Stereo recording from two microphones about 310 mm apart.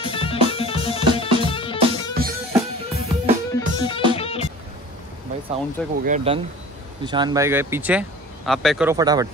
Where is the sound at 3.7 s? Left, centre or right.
Centre.